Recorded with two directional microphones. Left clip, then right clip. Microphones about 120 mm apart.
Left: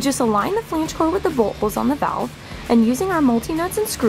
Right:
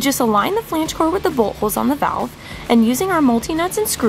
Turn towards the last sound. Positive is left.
turn(degrees=-30)  # may be behind; listen again after turning